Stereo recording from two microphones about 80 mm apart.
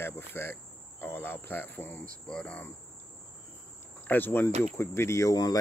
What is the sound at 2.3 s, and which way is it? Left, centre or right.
Speech, centre.